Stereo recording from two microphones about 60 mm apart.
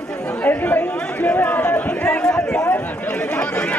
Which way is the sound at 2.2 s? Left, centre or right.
Centre.